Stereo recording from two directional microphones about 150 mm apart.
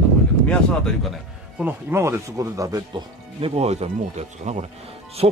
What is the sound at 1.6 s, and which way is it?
Speech, 15° right (ahead or behind).